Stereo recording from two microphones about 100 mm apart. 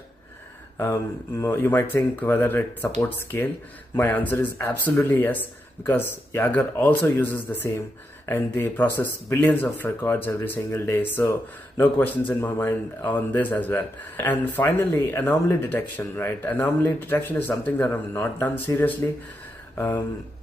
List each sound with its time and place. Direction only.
1.4 s speech: 25° left (ahead or behind)